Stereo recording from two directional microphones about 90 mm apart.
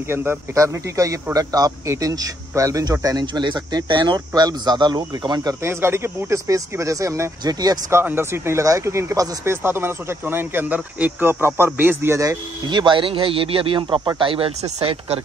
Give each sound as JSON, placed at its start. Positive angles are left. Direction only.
{"t": 0.1, "sound": "a man's voice", "side_deg": -25}
{"t": 5.6, "sound": "speech", "side_deg": -30}
{"t": 7.4, "sound": "a man's voice", "side_deg": -45}
{"t": 7.9, "sound": "speech", "side_deg": -25}
{"t": 12.6, "sound": "speech", "side_deg": -60}